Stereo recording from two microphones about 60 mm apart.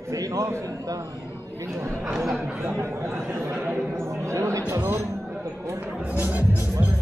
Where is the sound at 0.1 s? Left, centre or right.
Right.